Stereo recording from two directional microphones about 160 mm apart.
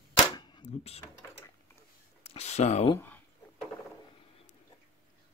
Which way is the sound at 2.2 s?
40° left (ahead or behind).